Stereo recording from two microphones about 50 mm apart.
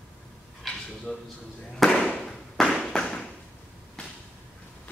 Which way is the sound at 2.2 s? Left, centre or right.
Centre.